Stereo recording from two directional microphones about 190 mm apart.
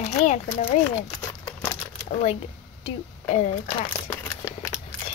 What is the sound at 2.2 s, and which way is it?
Speech, 30° left (ahead or behind).